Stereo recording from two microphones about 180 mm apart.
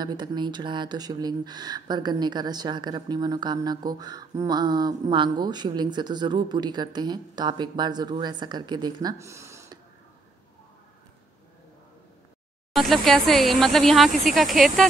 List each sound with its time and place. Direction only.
0.0 s speech: 25° right (ahead or behind)
12.7 s speech: centre (ahead or behind)